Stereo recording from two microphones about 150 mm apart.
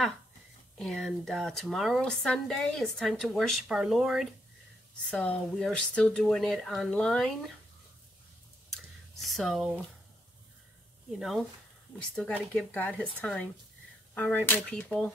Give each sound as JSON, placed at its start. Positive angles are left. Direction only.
{"t": 0.7, "sound": "speech", "side_deg": 5}
{"t": 9.2, "sound": "speech", "side_deg": 0}
{"t": 11.1, "sound": "speech", "side_deg": 0}
{"t": 12.5, "sound": "cap gun", "side_deg": 10}